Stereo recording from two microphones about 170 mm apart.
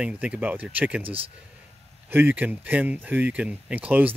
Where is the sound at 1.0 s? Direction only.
35° right (ahead or behind).